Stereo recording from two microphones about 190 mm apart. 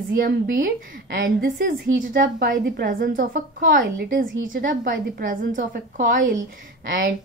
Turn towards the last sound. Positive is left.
turn(degrees=-50)  # may be behind; listen again after turning